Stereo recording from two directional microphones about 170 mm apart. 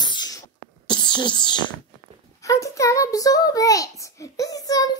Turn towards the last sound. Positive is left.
turn(degrees=20)  # may be behind; listen again after turning